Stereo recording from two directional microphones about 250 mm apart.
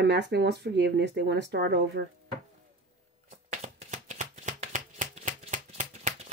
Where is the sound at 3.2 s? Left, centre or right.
Right.